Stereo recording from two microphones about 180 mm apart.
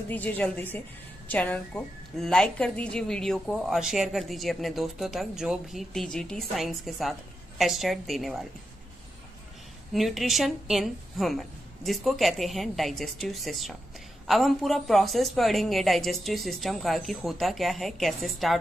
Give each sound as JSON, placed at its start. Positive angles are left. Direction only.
{"t": 0.1, "sound": "a woman's voice", "side_deg": 10}
{"t": 9.9, "sound": "a woman's voice", "side_deg": 0}